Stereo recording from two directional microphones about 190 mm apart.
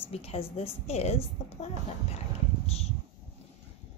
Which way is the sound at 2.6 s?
35° left (ahead or behind).